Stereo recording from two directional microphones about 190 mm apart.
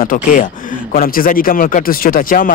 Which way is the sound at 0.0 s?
45° left (ahead or behind).